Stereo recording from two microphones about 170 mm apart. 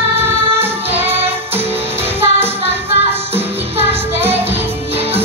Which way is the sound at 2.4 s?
35° right (ahead or behind).